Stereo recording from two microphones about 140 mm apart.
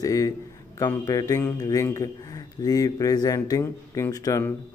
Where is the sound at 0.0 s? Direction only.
25° left (ahead or behind).